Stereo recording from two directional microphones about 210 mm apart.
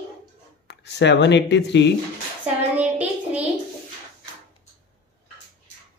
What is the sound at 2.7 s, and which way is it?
Child singing, 5° right (ahead or behind).